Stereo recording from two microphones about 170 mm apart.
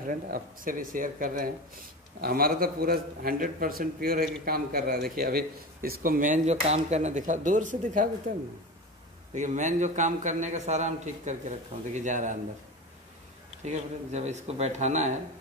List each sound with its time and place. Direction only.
0.0 s speech: 55° right (ahead or behind)
9.3 s a man's voice: 45° right (ahead or behind)
13.7 s a man's voice: 40° right (ahead or behind)